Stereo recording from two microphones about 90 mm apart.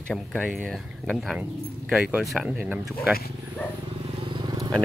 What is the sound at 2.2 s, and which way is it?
Speech, centre (ahead or behind).